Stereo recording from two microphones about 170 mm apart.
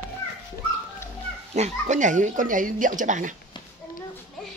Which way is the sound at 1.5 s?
45° right (ahead or behind).